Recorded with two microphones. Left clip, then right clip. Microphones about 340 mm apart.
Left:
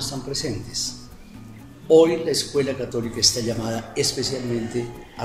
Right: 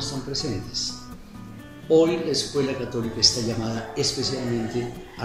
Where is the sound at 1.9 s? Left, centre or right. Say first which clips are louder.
Left 4 dB; left.